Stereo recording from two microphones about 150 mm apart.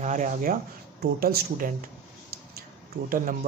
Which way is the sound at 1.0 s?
90° right.